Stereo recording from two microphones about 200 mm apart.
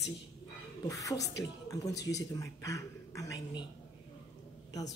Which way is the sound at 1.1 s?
55° left (ahead or behind).